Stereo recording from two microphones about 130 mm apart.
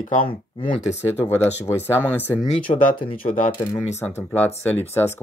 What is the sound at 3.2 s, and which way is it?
Speech, 90° left.